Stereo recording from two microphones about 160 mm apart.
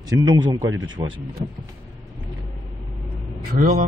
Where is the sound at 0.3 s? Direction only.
25° right (ahead or behind).